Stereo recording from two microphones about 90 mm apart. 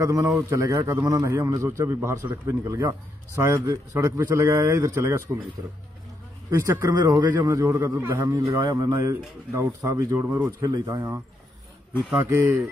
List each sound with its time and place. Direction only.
0.0 s a man's voice: 40° right (ahead or behind)
6.5 s a man's voice: 35° right (ahead or behind)
7.5 s a man's voice: 30° right (ahead or behind)
8.5 s a man's voice: 45° right (ahead or behind)
12.2 s speech: 25° right (ahead or behind)